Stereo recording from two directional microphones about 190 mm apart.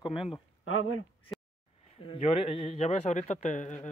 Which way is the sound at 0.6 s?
90° left.